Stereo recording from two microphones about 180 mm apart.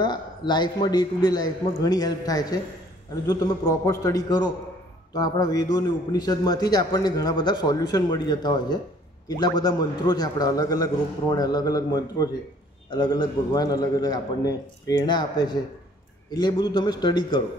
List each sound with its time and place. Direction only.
0.0 s a man's voice: 25° left (ahead or behind)
3.8 s a man's voice: 20° left (ahead or behind)